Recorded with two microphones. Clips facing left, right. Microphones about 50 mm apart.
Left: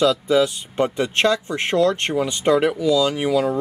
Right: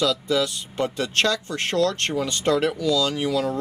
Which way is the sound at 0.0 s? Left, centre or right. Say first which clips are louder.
Left 5 dB; left.